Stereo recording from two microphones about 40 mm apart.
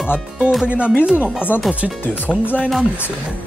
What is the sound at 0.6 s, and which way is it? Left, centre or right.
Music, right.